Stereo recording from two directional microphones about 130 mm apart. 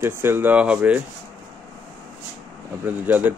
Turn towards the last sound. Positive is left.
turn(degrees=-15)  # may be behind; listen again after turning